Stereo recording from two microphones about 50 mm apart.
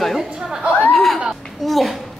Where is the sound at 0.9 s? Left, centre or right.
Centre.